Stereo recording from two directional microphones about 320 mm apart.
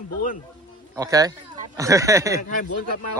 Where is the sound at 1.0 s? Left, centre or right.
Centre.